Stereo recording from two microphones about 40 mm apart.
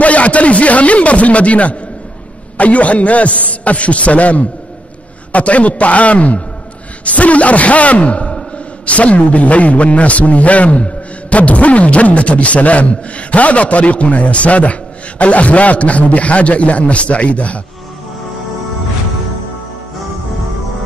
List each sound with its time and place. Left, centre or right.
0.0 s a man's voice: left